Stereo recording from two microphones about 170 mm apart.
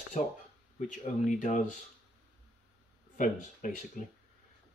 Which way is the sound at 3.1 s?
50° left (ahead or behind).